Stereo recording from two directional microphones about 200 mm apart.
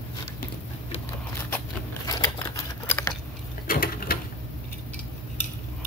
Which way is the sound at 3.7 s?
45° left (ahead or behind).